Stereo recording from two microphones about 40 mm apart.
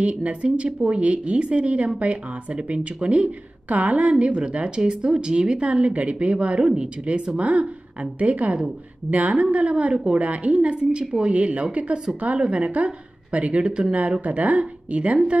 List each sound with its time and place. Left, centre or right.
0.0 s speech: right